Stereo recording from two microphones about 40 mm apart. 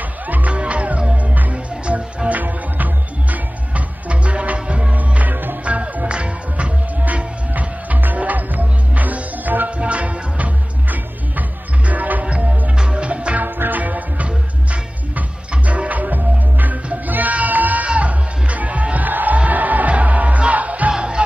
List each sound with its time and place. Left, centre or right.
0.3 s music: right
1.9 s music: right
4.1 s music: right
4.9 s music: right
5.7 s music: right
7.0 s music: right
9.7 s music: right
12.3 s music: right
13.4 s music: right
17.8 s music: right